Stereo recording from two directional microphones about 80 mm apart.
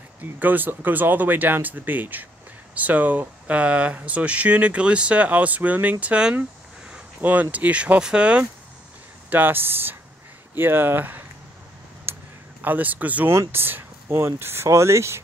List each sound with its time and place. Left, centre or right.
0.2 s speech: right
12.1 s a sound: right
12.6 s speech: right
13.3 s speech: right